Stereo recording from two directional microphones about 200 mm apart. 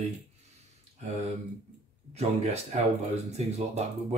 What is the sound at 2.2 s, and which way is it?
Speech, 35° right (ahead or behind).